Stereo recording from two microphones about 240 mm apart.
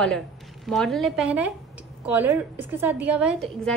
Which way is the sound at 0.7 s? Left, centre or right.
Centre.